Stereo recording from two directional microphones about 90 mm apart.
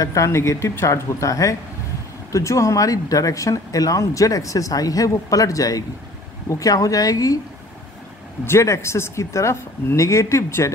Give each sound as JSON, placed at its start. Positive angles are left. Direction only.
{"t": 0.0, "sound": "speech", "side_deg": 35}
{"t": 8.5, "sound": "speech", "side_deg": 30}